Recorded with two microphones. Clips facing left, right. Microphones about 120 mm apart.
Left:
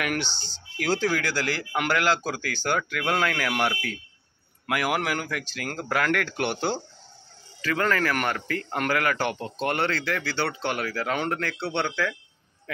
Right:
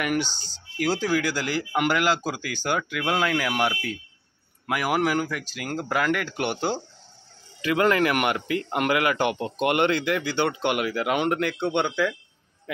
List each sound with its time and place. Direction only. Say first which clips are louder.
0.0 s speech: right 3 dB; 5° right (ahead or behind)